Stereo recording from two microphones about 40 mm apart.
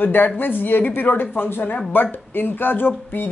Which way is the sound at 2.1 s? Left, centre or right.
Left.